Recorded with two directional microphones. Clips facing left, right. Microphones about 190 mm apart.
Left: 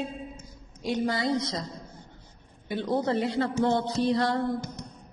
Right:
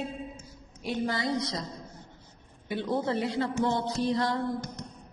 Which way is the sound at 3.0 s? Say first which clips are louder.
Left 3 dB; 45° left (ahead or behind).